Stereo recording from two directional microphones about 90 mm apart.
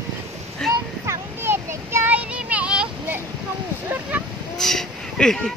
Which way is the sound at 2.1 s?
15° right (ahead or behind).